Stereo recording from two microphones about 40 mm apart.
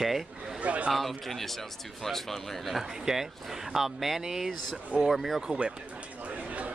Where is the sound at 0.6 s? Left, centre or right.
Right.